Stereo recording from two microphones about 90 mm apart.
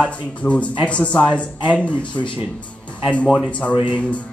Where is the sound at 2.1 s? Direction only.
65° left (ahead or behind).